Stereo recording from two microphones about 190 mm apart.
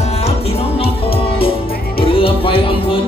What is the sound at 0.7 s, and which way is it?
Music, 30° left (ahead or behind).